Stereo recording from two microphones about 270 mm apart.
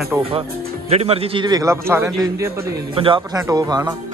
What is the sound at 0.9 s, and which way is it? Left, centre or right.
A man's voice, right.